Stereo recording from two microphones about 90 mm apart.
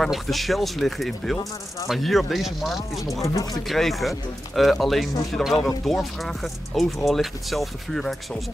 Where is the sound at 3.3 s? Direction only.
45° left (ahead or behind).